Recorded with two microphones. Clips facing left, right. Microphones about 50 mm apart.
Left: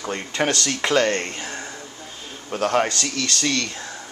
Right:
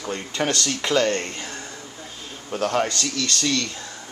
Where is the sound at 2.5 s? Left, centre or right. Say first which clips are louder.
Left 1 dB; left.